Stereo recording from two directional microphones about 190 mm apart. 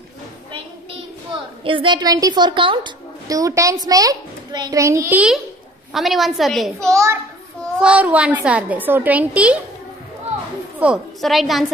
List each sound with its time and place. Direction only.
1.3 s a woman's voice: 25° right (ahead or behind); by 6.9 s centre (ahead or behind)
6.9 s a woman's voice: 15° right (ahead or behind)
10.8 s a woman's voice: 5° right (ahead or behind)